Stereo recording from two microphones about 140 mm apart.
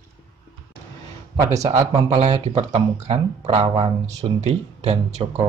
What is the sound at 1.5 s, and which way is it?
Speech, 55° right (ahead or behind).